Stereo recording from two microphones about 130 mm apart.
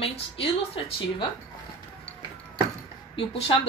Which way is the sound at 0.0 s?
50° left (ahead or behind).